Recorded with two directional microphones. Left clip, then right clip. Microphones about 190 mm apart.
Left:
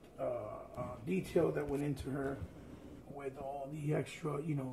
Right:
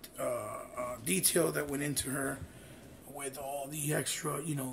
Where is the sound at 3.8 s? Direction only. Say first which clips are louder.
Right 3 dB; 10° right (ahead or behind).